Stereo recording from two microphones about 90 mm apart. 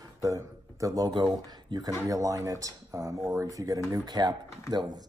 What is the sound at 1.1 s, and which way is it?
Speech, 55° right (ahead or behind).